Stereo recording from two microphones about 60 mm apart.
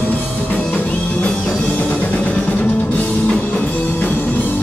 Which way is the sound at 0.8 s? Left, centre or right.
Left.